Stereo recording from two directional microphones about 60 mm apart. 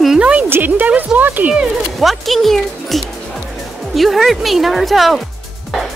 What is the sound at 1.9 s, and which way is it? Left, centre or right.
Speech, centre.